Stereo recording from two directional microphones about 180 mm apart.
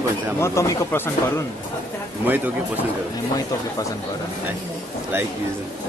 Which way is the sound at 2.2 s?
10° right (ahead or behind).